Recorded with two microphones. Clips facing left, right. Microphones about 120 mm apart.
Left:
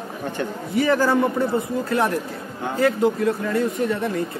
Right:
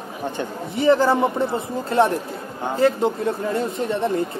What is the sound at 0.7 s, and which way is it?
A man's voice, 25° right (ahead or behind).